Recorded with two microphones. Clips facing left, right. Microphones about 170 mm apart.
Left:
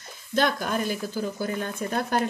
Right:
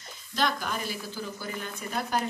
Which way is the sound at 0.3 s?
50° left (ahead or behind).